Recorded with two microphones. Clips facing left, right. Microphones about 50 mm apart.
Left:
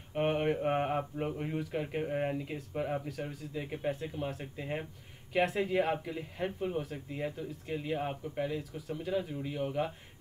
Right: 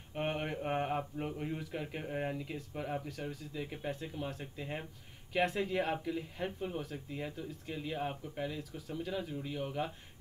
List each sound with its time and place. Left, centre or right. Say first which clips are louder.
0.1 s speech: left 6 dB; centre